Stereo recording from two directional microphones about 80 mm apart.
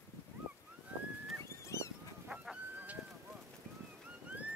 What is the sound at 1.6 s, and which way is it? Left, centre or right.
Goose, left.